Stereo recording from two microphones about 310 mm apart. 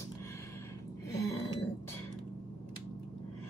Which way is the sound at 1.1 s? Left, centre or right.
Centre.